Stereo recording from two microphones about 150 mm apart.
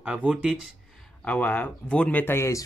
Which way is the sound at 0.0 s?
10° right (ahead or behind).